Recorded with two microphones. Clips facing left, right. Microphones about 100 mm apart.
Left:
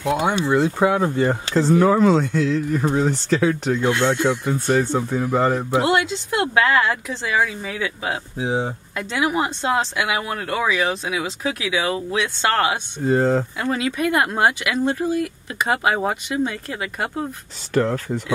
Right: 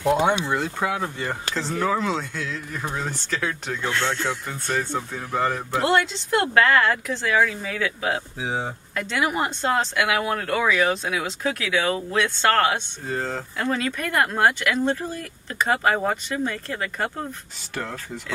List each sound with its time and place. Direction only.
0.1 s speech: 5° left (ahead or behind)
0.7 s speech: 35° left (ahead or behind)
3.8 s speech: 20° left (ahead or behind)
5.3 s speech: 40° left (ahead or behind)
5.6 s speech: 5° left (ahead or behind)
13.0 s speech: 35° left (ahead or behind)
13.6 s speech: 10° left (ahead or behind)
17.7 s speech: 45° left (ahead or behind)